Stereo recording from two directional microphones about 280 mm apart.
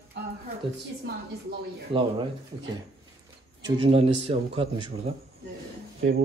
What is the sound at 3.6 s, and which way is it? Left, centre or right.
Speech, centre.